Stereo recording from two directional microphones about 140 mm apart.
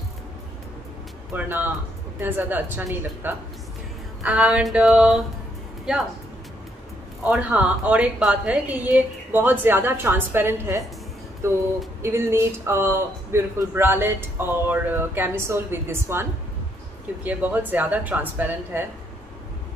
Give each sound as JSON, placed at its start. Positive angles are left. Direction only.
{"t": 1.3, "sound": "a man's voice", "side_deg": -15}
{"t": 7.2, "sound": "a man's voice", "side_deg": -10}
{"t": 11.4, "sound": "a sound", "side_deg": -20}
{"t": 12.0, "sound": "a man's voice", "side_deg": -20}